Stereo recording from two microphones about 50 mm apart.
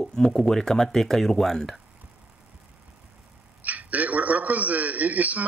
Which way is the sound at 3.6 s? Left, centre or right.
Right.